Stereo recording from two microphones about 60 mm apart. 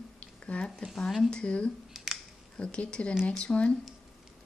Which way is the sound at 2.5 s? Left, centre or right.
Centre.